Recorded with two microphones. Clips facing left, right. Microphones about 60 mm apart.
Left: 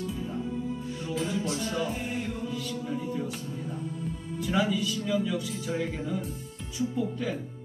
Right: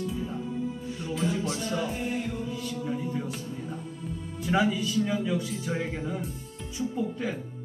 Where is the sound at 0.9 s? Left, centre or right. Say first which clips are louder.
Right 2 dB; centre.